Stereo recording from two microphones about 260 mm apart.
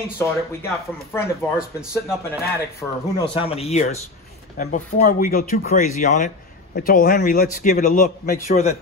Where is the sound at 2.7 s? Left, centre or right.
Centre.